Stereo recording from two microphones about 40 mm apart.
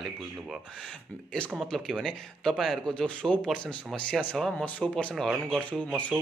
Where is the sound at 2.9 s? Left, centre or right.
Left.